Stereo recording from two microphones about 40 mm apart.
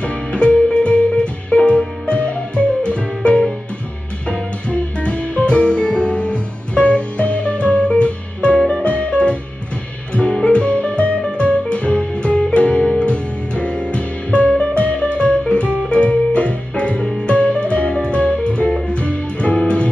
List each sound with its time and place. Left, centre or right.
0.0 s music: left
4.3 s music: left